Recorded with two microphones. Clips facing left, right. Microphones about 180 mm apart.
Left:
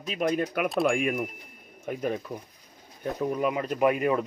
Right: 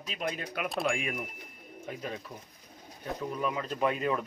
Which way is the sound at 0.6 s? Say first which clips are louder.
Left 5 dB; centre (ahead or behind).